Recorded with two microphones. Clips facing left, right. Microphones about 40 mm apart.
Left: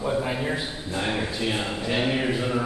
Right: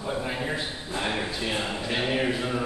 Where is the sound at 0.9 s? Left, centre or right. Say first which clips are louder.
Left 2 dB; centre.